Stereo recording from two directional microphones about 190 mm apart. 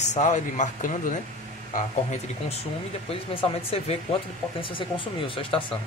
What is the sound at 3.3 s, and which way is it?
Speech, 30° left (ahead or behind).